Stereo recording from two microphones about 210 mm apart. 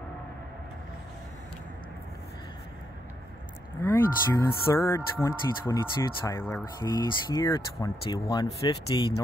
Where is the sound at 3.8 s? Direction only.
10° left (ahead or behind).